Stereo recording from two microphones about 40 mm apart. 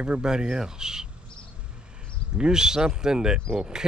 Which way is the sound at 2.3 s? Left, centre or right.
Centre.